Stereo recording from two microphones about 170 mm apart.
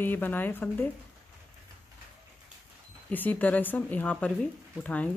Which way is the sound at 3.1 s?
10° left (ahead or behind).